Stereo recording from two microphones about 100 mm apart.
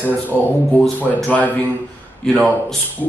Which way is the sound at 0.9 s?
15° left (ahead or behind).